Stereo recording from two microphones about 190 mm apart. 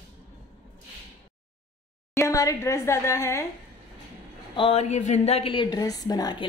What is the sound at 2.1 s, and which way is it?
A woman's voice, 15° left (ahead or behind).